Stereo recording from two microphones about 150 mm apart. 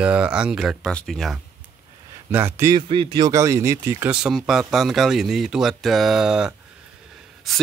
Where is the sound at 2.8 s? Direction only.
35° right (ahead or behind); by 4.1 s 15° right (ahead or behind).